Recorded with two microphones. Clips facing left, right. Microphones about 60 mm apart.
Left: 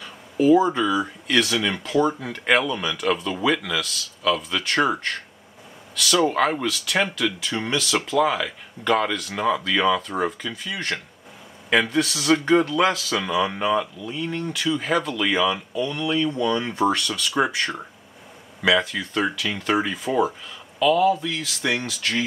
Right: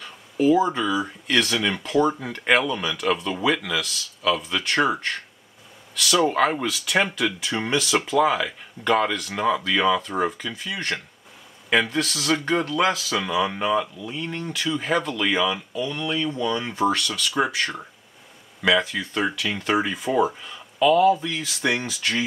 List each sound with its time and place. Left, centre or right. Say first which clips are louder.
0.0 s speech: left 1 dB; centre